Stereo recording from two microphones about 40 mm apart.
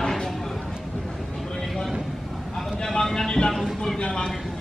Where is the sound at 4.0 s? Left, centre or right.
Left.